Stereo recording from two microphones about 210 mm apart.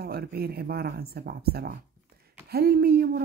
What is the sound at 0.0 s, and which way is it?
Speech, 50° right (ahead or behind).